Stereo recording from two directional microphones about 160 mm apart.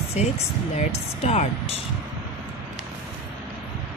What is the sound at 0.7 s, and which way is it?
Speech, 45° left (ahead or behind).